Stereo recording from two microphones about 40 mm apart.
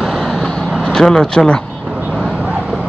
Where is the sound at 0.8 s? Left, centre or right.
Centre.